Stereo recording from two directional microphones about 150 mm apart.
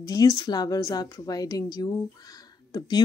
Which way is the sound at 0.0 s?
25° left (ahead or behind).